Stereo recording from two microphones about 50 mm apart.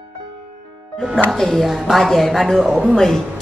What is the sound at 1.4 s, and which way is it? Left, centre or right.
A woman's voice, centre.